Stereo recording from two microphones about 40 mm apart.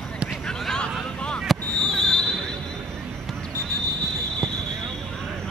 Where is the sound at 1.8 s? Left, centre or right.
Centre.